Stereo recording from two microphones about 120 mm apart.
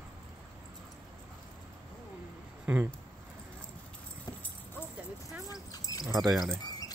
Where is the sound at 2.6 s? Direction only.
15° right (ahead or behind).